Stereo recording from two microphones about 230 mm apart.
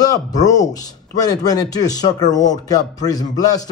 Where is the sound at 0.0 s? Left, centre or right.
Centre.